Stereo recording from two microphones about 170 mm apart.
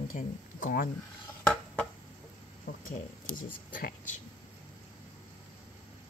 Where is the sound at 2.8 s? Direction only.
50° left (ahead or behind).